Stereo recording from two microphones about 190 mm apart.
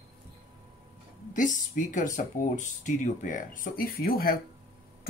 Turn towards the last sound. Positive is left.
turn(degrees=50)  # may be behind; listen again after turning